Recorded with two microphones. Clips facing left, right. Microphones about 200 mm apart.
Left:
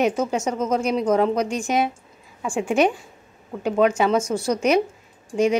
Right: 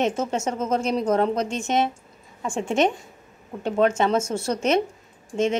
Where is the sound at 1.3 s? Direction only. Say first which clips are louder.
Left 2 dB; 25° right (ahead or behind).